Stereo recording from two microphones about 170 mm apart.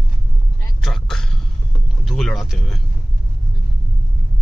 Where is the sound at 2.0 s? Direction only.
Centre (ahead or behind).